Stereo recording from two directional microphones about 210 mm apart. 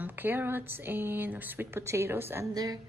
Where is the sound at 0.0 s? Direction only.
10° right (ahead or behind).